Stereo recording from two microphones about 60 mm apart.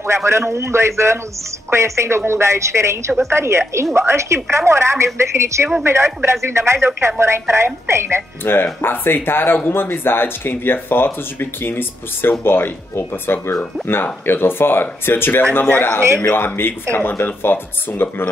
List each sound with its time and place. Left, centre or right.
0.0 s a woman's voice: right
8.4 s speech: left